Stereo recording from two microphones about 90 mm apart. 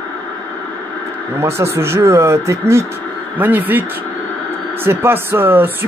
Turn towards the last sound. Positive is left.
turn(degrees=-25)  # may be behind; listen again after turning